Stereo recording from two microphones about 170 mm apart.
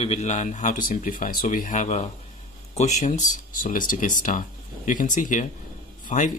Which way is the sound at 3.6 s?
55° left (ahead or behind).